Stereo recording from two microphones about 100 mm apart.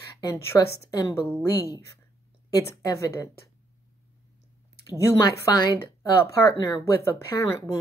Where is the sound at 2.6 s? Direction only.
35° left (ahead or behind).